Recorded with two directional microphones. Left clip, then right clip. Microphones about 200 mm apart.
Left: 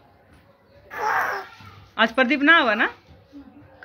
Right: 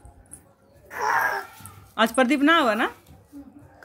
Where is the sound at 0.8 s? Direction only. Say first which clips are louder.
Even; 40° left (ahead or behind).